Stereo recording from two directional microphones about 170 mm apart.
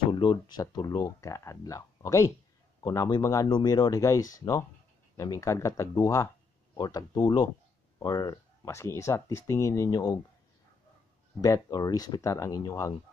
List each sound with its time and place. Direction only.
0.1 s speech: 25° left (ahead or behind)
11.4 s speech: 20° left (ahead or behind)